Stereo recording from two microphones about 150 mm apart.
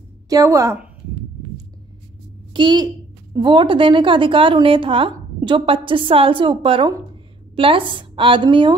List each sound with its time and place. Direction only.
0.3 s a woman's voice: 20° right (ahead or behind)
2.5 s a woman's voice: 30° right (ahead or behind)